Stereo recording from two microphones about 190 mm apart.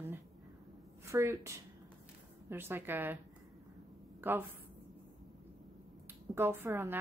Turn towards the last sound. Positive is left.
turn(degrees=-10)  # may be behind; listen again after turning